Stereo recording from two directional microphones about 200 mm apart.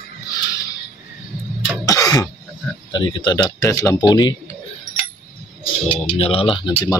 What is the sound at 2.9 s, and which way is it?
Speech, 20° left (ahead or behind).